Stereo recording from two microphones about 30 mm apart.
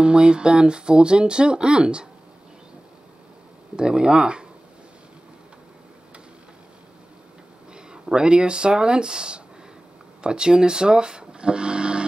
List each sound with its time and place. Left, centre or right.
0.0 s speech: right
3.7 s speech: right
7.7 s speech: right